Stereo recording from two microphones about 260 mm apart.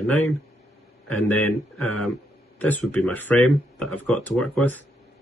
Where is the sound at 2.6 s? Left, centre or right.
Centre.